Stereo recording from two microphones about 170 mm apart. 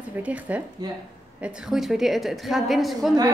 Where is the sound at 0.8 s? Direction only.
25° right (ahead or behind).